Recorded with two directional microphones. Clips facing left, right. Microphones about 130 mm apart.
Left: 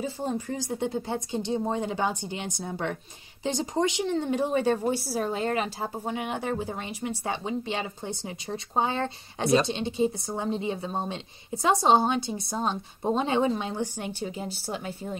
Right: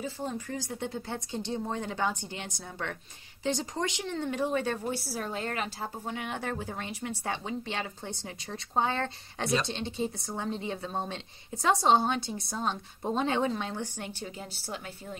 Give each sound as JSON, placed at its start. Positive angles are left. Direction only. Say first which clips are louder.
{"t": 0.0, "sound": "a woman's voice", "louder": "left 5 dB", "side_deg": 25}